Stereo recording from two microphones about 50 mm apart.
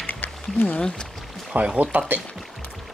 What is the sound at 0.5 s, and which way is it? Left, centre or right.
Speech, left.